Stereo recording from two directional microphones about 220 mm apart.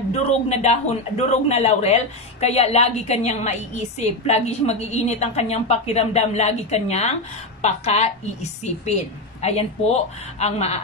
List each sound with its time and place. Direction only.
0.1 s a man's voice: 30° left (ahead or behind)